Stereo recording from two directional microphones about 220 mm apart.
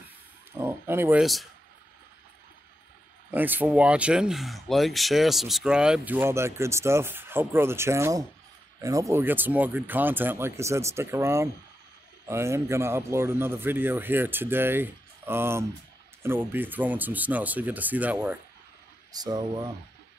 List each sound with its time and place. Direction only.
0.5 s speech: 10° right (ahead or behind)
3.3 s speech: 10° right (ahead or behind)
19.1 s speech: 20° right (ahead or behind)